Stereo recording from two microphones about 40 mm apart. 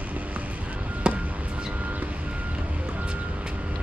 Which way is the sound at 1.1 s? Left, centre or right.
Right.